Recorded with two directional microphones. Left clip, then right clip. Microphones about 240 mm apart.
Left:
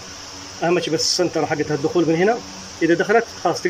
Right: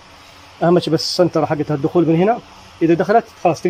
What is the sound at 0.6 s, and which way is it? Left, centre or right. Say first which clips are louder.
Speech: right 4 dB; centre.